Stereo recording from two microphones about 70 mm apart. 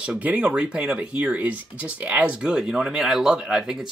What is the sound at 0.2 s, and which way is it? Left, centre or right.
Speech, centre.